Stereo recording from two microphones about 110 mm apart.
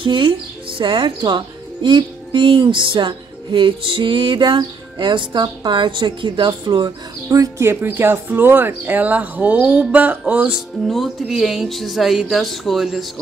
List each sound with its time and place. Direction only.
0.0 s speech: 50° right (ahead or behind); by 10.6 s 15° right (ahead or behind)
10.9 s speech: centre (ahead or behind)